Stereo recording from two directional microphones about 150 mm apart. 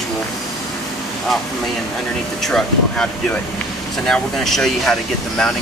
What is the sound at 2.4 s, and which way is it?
Speech, 5° left (ahead or behind).